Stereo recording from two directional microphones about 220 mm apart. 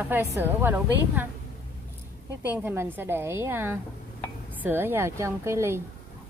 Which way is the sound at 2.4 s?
10° right (ahead or behind).